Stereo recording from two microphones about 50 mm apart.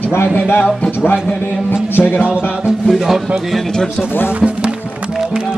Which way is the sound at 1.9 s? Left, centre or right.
Left.